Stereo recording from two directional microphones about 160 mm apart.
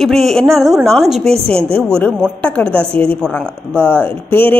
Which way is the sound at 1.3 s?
40° right (ahead or behind).